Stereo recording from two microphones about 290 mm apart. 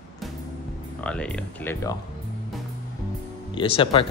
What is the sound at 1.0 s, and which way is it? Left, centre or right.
Speech, centre.